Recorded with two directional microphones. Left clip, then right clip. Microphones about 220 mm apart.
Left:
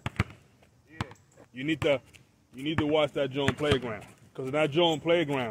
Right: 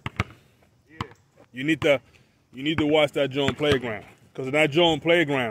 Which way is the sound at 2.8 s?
45° right (ahead or behind).